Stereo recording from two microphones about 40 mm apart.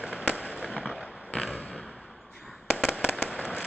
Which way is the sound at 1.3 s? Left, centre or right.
Left.